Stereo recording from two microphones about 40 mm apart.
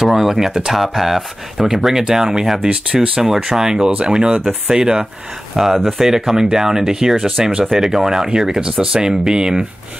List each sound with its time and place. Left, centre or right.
0.0 s speech: centre
0.7 s speech: centre
5.5 s speech: centre